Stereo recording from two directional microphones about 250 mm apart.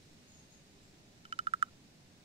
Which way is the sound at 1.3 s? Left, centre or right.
Right.